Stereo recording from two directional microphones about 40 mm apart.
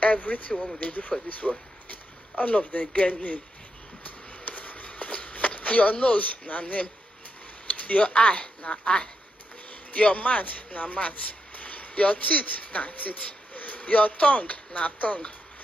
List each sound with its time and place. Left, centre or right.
0.0 s speech: left
1.4 s speech: centre
1.9 s speech: left
4.0 s a sound: left
4.8 s a sound: left
7.6 s speech: left
9.7 s speech: left